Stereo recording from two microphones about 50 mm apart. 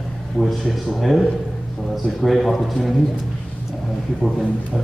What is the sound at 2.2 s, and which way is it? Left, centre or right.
Speech, centre.